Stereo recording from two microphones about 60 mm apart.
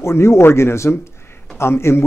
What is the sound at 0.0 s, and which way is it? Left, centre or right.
A man's voice, left.